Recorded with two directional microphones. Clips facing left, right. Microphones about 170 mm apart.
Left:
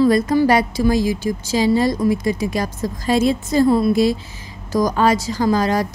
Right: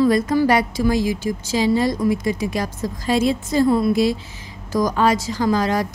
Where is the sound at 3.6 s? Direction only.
30° left (ahead or behind).